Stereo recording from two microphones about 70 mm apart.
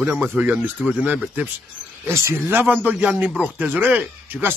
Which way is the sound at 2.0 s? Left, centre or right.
Right.